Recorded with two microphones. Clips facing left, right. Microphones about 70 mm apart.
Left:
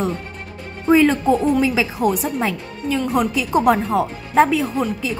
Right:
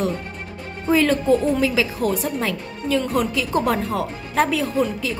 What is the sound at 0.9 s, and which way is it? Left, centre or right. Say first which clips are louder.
Speech: left 2 dB; centre.